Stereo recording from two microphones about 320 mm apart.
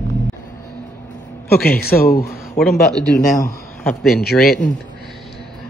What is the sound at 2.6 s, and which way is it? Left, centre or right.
Speech, centre.